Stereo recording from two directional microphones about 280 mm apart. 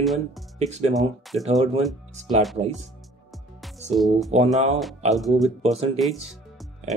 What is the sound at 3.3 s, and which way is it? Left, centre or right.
Music, centre.